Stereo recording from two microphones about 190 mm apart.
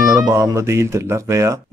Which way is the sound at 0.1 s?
15° right (ahead or behind).